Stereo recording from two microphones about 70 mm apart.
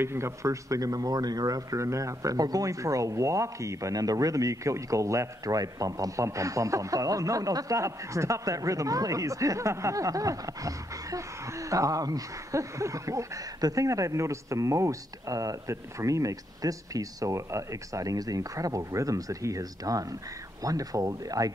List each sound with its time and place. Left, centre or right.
0.0 s speech: right